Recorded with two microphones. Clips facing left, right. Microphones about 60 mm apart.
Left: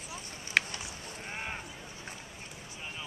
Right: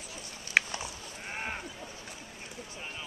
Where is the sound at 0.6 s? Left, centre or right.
Centre.